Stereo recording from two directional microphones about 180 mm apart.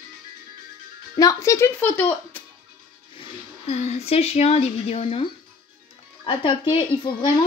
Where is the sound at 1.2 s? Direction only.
20° left (ahead or behind).